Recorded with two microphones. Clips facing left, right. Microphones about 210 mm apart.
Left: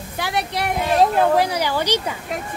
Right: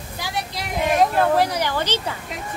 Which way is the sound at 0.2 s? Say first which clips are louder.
Left 6 dB; 65° left (ahead or behind).